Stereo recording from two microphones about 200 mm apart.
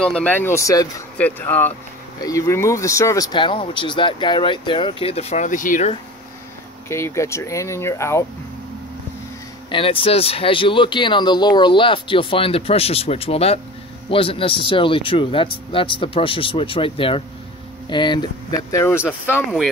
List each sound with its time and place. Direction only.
0.0 s speech: 5° left (ahead or behind); by 5.9 s 40° left (ahead or behind)
6.9 s speech: 15° left (ahead or behind)
9.7 s speech: 25° left (ahead or behind)